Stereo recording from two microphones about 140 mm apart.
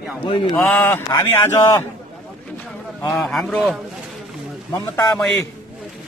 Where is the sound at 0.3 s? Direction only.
35° left (ahead or behind).